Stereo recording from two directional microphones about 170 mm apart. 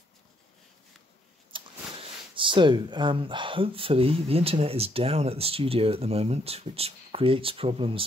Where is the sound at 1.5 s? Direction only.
30° right (ahead or behind).